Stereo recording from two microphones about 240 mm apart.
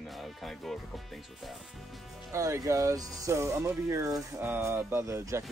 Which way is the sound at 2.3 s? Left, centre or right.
Centre.